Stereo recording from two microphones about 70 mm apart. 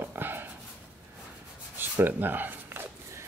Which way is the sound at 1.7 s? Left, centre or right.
Right.